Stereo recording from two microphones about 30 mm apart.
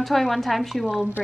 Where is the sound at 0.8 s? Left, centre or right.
Right.